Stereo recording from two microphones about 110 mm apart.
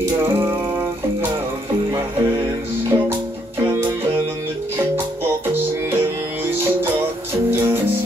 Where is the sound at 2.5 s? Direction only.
20° right (ahead or behind).